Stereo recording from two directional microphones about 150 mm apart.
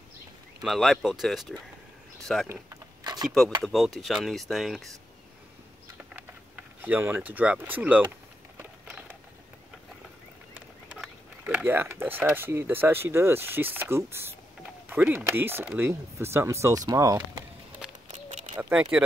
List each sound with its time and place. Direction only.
0.6 s speech: centre (ahead or behind)
2.4 s a sound: 20° right (ahead or behind)
3.3 s speech: centre (ahead or behind)
5.9 s a sound: 15° right (ahead or behind)
10.5 s speech: 5° right (ahead or behind)
18.6 s speech: 10° right (ahead or behind)